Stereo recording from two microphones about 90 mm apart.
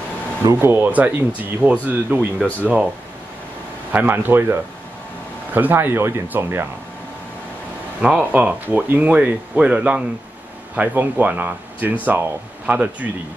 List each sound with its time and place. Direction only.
0.5 s speech: 25° right (ahead or behind)
3.9 s speech: 20° right (ahead or behind)
8.0 s speech: 10° right (ahead or behind)